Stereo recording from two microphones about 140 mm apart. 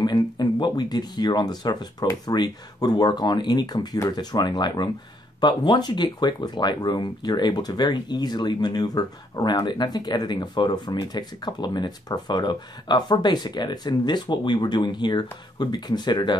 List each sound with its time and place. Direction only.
0.0 s speech: 30° left (ahead or behind)